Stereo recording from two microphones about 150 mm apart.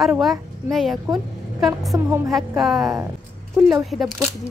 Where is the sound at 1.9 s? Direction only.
20° right (ahead or behind).